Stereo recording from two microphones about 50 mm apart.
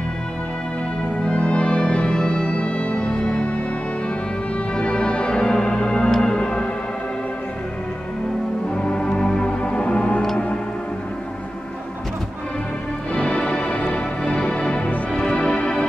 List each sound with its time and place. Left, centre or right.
1.2 s music: left
4.7 s music: left
8.7 s music: left
13.1 s music: left